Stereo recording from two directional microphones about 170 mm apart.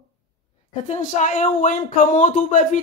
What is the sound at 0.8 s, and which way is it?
Speech, 45° left (ahead or behind).